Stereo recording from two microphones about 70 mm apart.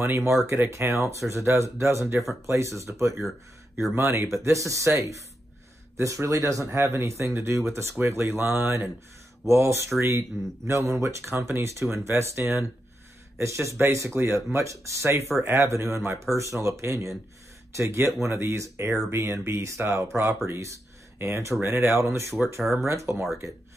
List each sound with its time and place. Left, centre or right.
0.0 s speech: right
22.6 s speech: centre
22.8 s speech: right